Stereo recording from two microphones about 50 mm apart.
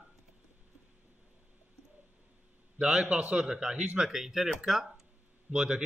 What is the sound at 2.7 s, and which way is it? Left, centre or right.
A man's voice, right.